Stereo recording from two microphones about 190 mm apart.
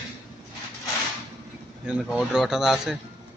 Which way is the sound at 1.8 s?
5° right (ahead or behind).